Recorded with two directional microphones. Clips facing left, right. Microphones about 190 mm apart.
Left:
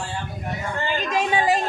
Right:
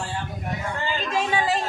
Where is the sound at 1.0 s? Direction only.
15° left (ahead or behind).